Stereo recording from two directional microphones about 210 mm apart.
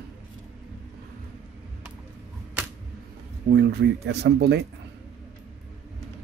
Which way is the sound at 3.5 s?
50° right (ahead or behind).